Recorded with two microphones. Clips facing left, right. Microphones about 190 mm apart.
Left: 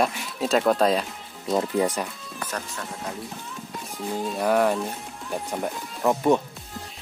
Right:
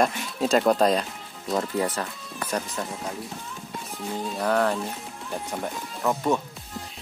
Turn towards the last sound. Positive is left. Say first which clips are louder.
# left 4 dB
turn(degrees=15)  # may be behind; listen again after turning